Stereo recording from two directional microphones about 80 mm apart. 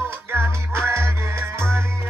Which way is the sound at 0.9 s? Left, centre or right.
Right.